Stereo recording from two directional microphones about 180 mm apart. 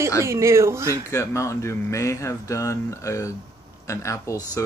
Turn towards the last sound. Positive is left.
turn(degrees=20)  # may be behind; listen again after turning